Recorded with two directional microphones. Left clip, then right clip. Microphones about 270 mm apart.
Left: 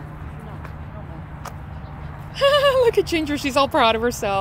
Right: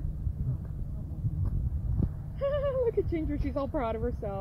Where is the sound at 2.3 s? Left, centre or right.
Centre.